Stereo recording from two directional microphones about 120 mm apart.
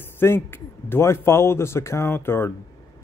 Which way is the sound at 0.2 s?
20° left (ahead or behind).